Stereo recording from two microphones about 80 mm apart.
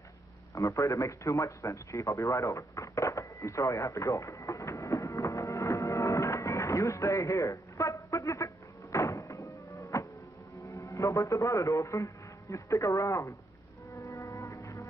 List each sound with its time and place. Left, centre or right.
0.6 s radio: left
8.9 s music: left
10.7 s a man's voice: left
13.9 s music: left